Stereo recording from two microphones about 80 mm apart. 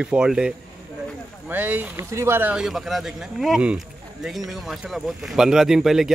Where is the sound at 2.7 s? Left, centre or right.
Centre.